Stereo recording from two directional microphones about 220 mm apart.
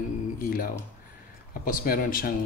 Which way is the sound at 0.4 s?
40° left (ahead or behind).